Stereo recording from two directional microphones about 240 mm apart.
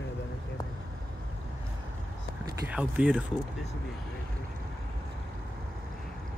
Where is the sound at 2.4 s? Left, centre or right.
Centre.